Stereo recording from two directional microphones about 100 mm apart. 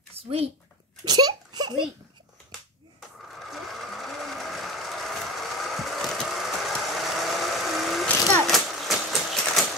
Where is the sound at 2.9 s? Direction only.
Centre (ahead or behind).